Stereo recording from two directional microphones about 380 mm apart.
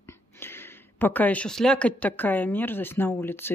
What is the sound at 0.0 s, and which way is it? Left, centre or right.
Speech, centre.